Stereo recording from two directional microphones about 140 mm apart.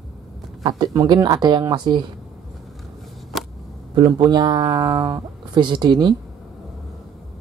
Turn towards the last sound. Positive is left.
turn(degrees=-30)  # may be behind; listen again after turning